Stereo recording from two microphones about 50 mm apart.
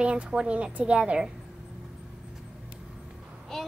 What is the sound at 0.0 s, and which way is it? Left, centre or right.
A woman's voice, right.